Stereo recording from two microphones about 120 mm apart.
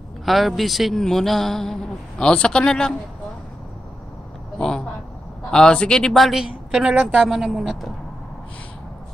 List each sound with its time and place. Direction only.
0.2 s a man's voice: centre (ahead or behind)
4.6 s a sound: 5° left (ahead or behind)
5.5 s a man's voice: 10° left (ahead or behind)